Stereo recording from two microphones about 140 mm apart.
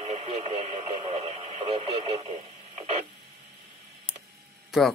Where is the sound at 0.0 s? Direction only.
50° right (ahead or behind).